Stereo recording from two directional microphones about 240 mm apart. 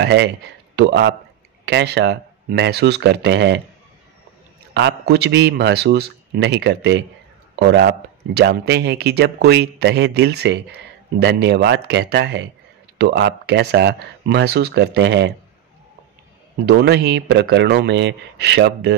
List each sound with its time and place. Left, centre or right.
0.0 s speech: right
4.7 s speech: right
16.6 s speech: right